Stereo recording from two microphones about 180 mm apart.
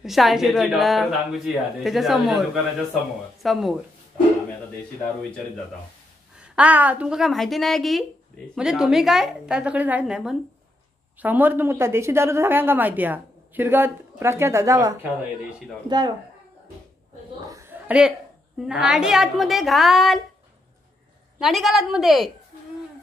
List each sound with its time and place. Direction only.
0.0 s a woman's voice: centre (ahead or behind)
6.4 s a woman's voice: 5° right (ahead or behind)
17.5 s a sound: 15° right (ahead or behind)
18.6 s a woman's voice: 5° right (ahead or behind)
21.4 s a woman's voice: centre (ahead or behind)